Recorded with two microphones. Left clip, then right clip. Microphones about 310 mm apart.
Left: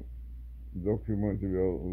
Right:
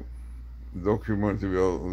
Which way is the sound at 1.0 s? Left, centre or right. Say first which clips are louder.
Right 6 dB; centre.